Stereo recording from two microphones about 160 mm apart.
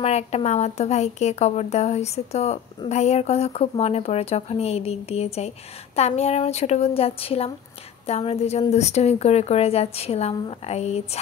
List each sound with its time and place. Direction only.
0.0 s a woman's voice: 40° left (ahead or behind)